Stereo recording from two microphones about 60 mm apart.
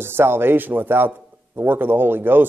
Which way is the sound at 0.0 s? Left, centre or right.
Right.